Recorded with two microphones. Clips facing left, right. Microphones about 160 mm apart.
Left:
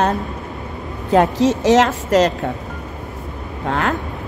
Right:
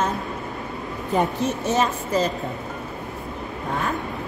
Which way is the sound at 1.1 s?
90° left.